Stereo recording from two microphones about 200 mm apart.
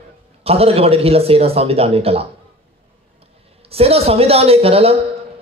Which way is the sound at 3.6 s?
30° right (ahead or behind).